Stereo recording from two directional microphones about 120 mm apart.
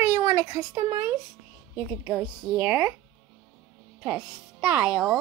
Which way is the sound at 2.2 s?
10° right (ahead or behind).